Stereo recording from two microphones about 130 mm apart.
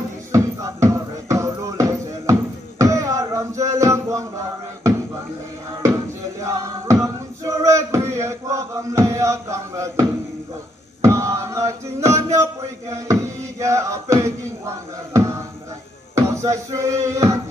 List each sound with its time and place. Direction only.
0.3 s music: 25° right (ahead or behind)
6.4 s a sound: 20° right (ahead or behind)
16.2 s music: 25° right (ahead or behind)